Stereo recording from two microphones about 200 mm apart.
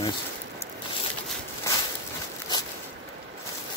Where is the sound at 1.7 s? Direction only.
15° left (ahead or behind).